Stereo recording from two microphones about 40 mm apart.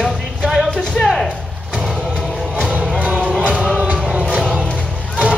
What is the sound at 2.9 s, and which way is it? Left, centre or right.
Music, right.